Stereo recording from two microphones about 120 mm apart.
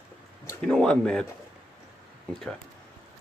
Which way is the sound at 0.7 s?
5° left (ahead or behind).